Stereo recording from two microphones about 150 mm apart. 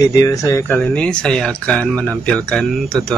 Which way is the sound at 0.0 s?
20° left (ahead or behind).